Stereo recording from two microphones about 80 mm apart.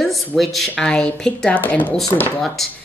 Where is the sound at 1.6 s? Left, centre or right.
Left.